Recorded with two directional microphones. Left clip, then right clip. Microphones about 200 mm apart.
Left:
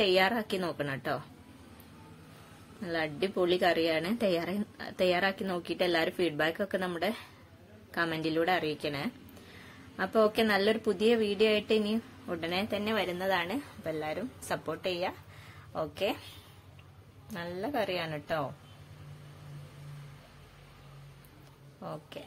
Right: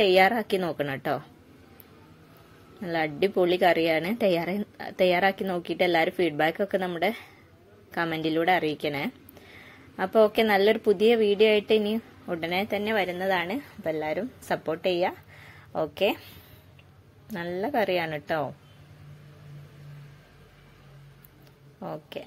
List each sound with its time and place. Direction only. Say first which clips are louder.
0.0 s speech: right 6 dB; 15° right (ahead or behind)
2.8 s a woman's voice: right 6 dB; 20° right (ahead or behind)
21.7 s speech: right 6 dB; 20° right (ahead or behind)